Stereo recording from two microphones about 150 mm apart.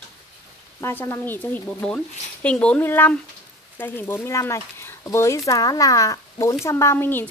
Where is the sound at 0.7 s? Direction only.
20° left (ahead or behind).